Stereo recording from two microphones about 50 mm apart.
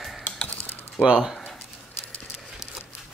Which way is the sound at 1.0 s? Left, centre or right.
Centre.